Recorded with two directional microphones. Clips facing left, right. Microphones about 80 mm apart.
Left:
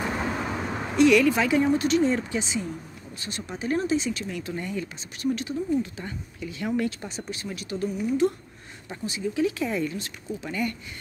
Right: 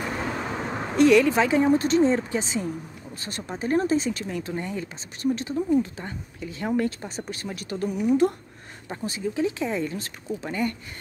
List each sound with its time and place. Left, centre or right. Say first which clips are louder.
0.0 s vehicle: left 1 dB; centre
0.9 s a woman's voice: right 1 dB; right
9.0 s speech: even; right